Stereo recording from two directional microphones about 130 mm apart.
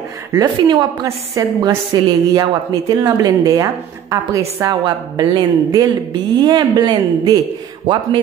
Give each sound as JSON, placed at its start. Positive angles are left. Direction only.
{"t": 0.3, "sound": "a woman's voice", "side_deg": -35}
{"t": 1.0, "sound": "a woman's voice", "side_deg": -25}